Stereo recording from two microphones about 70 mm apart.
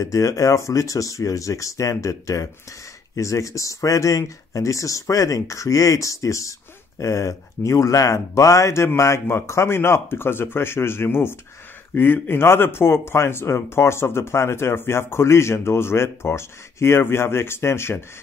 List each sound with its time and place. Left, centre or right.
0.0 s speech: left